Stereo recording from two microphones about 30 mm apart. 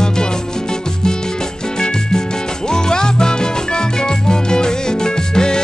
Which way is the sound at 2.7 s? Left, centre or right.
Left.